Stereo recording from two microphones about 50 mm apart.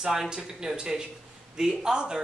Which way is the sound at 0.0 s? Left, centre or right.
Centre.